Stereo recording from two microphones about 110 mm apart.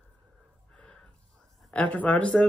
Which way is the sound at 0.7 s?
10° left (ahead or behind).